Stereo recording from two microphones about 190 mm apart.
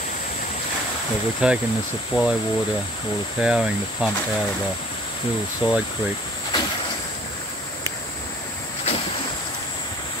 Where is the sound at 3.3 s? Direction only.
5° right (ahead or behind).